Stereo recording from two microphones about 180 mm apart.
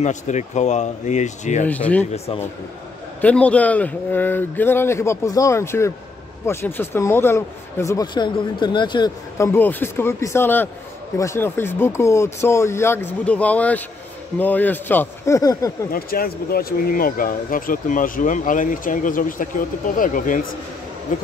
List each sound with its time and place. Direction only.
0.0 s speech: 40° left (ahead or behind)
3.2 s speech: 10° left (ahead or behind)
15.9 s speech: 55° left (ahead or behind)